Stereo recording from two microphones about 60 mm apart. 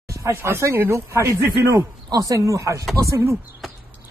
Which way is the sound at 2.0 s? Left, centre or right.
Right.